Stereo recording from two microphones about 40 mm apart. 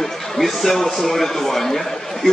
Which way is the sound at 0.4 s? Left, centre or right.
Centre.